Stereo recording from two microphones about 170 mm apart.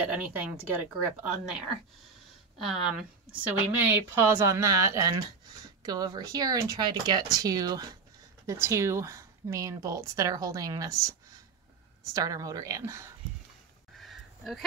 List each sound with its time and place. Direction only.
0.1 s a woman's voice: 10° right (ahead or behind)
2.6 s a woman's voice: centre (ahead or behind); by 13.1 s 20° right (ahead or behind)
13.9 s a sound: centre (ahead or behind)